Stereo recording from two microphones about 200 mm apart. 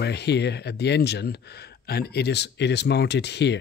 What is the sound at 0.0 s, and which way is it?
Speech, 55° left (ahead or behind).